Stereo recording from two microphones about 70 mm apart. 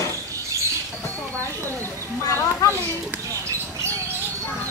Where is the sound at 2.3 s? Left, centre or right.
Left.